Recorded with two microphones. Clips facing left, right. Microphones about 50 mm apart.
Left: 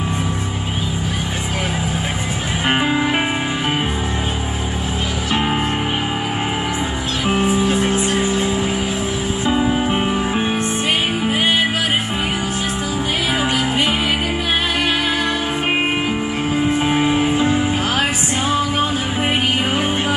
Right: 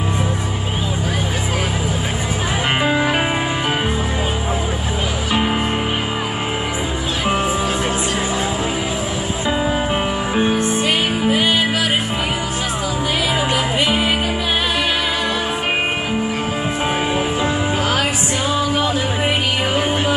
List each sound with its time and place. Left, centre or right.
5.3 s music: centre
9.8 s music: centre
10.6 s music: left
13.3 s music: left
18.5 s music: left